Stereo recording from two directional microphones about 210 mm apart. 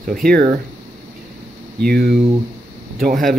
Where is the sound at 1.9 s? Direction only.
45° right (ahead or behind).